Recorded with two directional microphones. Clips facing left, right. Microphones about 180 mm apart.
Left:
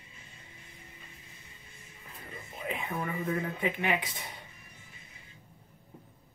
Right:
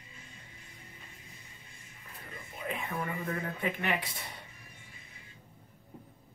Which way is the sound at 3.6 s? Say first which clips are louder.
Left 1 dB; 20° left (ahead or behind).